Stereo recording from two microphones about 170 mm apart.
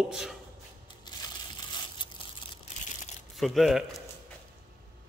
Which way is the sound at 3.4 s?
Centre (ahead or behind).